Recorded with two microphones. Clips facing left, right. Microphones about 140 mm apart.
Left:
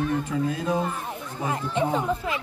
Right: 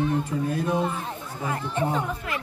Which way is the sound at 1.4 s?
20° left (ahead or behind).